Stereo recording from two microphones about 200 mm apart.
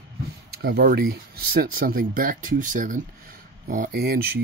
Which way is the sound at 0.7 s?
50° right (ahead or behind).